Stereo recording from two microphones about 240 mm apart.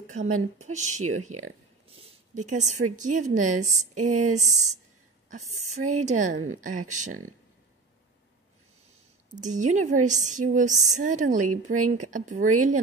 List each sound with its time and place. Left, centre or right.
0.1 s a woman's voice: right
9.3 s a woman's voice: right